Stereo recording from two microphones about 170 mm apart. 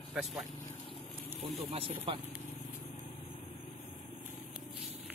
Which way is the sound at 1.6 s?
35° right (ahead or behind).